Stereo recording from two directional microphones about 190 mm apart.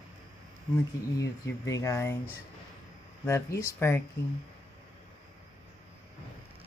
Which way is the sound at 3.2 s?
15° left (ahead or behind).